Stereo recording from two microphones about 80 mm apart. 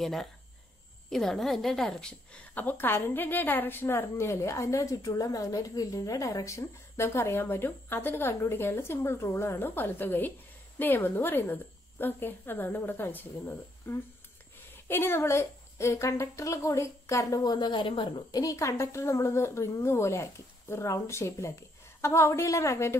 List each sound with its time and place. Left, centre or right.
0.0 s a woman's voice: centre
2.5 s a woman's voice: left
18.3 s a woman's voice: left